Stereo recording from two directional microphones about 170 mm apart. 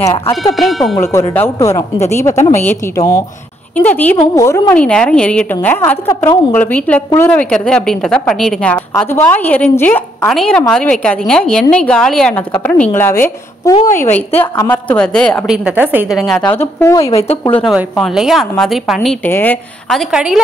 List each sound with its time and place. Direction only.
0.0 s speech: 30° left (ahead or behind)
0.6 s a woman's voice: centre (ahead or behind)
0.9 s a woman's voice: 15° left (ahead or behind)
15.0 s a woman's voice: 5° left (ahead or behind)
15.5 s a woman's voice: 10° right (ahead or behind)
16.4 s a woman's voice: 15° left (ahead or behind)
17.1 s speech: 35° left (ahead or behind)
17.4 s a woman's voice: 10° left (ahead or behind)
19.0 s a woman's voice: 10° left (ahead or behind)